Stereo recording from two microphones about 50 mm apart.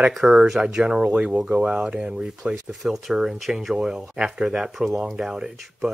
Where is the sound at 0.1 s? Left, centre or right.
Centre.